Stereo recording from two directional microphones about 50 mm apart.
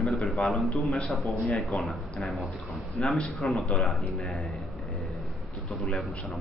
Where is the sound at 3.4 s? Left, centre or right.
Centre.